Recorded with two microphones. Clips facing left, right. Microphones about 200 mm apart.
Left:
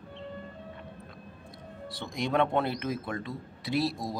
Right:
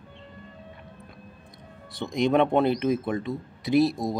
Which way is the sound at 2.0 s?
20° right (ahead or behind).